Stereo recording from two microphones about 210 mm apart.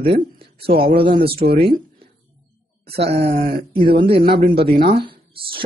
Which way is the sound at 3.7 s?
25° right (ahead or behind).